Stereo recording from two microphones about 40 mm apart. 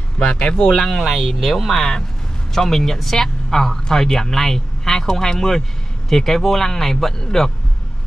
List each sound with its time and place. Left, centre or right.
0.2 s speech: left
0.7 s speech: centre
1.0 s speech: centre
1.7 s speech: centre